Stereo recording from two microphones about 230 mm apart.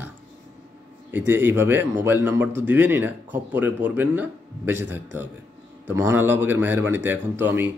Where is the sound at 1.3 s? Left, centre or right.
Centre.